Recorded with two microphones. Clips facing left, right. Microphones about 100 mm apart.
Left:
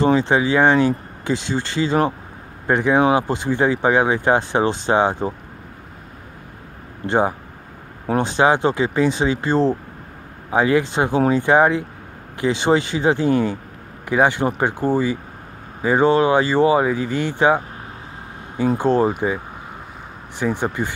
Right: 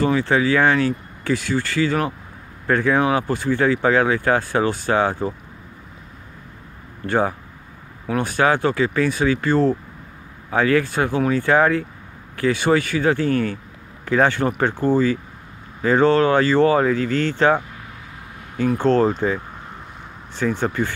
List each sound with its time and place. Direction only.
0.0 s speech: 20° left (ahead or behind)
7.1 s a man's voice: 20° left (ahead or behind)
18.8 s speech: 15° left (ahead or behind)